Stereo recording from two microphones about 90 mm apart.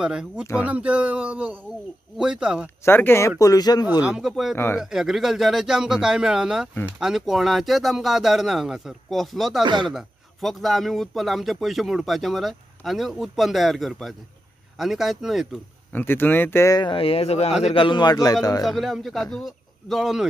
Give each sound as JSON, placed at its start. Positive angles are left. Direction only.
{"t": 0.0, "sound": "speech", "side_deg": -10}
{"t": 2.8, "sound": "speech", "side_deg": 25}
{"t": 4.0, "sound": "speech", "side_deg": -5}
{"t": 15.9, "sound": "speech", "side_deg": 25}
{"t": 16.9, "sound": "speech", "side_deg": 90}
{"t": 17.7, "sound": "a man's voice", "side_deg": 65}
{"t": 18.6, "sound": "speech", "side_deg": 0}